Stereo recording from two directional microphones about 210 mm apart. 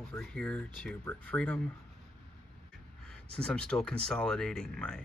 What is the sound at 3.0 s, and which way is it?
Speech, 5° left (ahead or behind).